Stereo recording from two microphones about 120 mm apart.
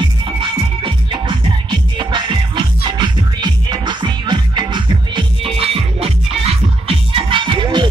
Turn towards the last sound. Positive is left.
turn(degrees=-40)  # may be behind; listen again after turning